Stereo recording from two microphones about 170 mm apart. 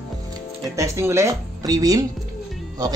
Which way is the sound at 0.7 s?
15° right (ahead or behind).